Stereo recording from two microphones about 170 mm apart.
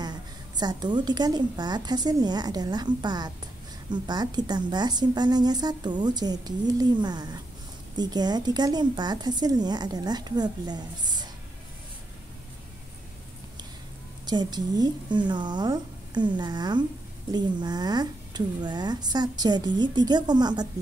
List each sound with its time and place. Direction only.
0.0 s a woman's voice: 25° right (ahead or behind)
14.2 s a woman's voice: 25° right (ahead or behind)